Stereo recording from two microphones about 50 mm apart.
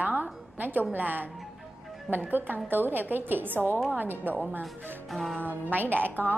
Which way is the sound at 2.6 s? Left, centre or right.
Right.